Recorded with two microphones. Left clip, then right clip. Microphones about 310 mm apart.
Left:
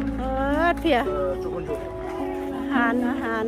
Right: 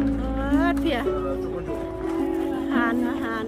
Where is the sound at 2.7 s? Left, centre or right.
Centre.